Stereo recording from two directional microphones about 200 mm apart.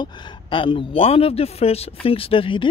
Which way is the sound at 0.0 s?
25° left (ahead or behind).